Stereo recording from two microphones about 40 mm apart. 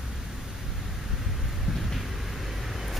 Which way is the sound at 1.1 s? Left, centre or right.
Centre.